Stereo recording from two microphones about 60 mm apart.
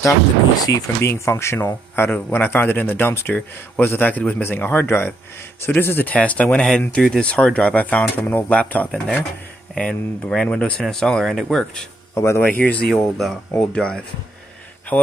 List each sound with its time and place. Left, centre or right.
0.6 s speech: left
1.0 s speech: left
2.0 s speech: left
3.3 s speech: left
3.8 s speech: left
4.1 s speech: left
6.1 s speech: left
12.1 s speech: left
12.4 s speech: left
12.9 s speech: centre
14.9 s speech: left